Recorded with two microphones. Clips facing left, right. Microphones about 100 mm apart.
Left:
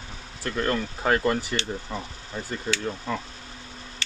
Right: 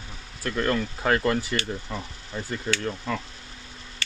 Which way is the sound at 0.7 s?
20° left (ahead or behind).